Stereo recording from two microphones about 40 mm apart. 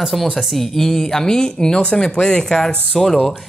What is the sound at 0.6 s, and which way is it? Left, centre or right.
Speech, centre.